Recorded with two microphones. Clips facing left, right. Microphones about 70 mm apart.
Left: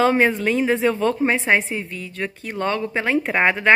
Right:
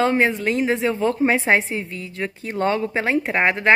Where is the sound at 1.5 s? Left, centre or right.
Right.